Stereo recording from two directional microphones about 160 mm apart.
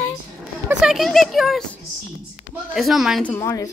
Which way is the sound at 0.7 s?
5° right (ahead or behind).